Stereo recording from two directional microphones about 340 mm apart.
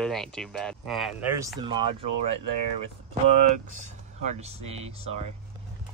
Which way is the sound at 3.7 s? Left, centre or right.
Centre.